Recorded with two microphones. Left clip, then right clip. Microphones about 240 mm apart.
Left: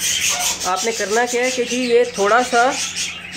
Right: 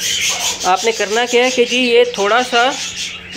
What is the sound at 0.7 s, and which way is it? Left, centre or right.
Speech, centre.